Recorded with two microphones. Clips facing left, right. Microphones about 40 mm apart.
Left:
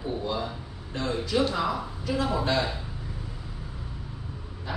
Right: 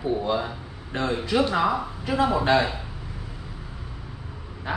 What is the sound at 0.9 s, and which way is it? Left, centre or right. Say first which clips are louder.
A woman's voice: right 3 dB; right.